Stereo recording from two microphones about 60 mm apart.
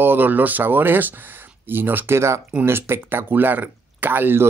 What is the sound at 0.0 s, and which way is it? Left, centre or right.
Speech, right.